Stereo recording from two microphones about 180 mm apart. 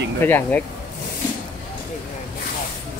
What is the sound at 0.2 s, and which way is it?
Speech, 10° left (ahead or behind).